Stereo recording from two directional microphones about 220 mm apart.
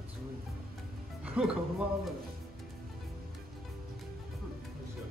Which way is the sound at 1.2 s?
5° right (ahead or behind).